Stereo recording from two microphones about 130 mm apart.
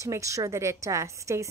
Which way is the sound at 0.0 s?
25° right (ahead or behind).